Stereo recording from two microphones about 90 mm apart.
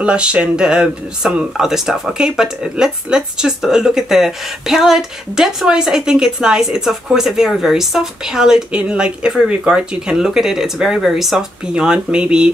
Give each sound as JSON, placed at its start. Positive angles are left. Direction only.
{"t": 0.0, "sound": "speech", "side_deg": -10}